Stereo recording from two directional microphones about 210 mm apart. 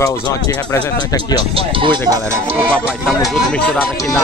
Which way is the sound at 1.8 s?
20° right (ahead or behind).